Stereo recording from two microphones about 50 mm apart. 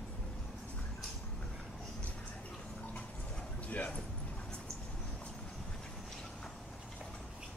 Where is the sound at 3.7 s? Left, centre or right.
Left.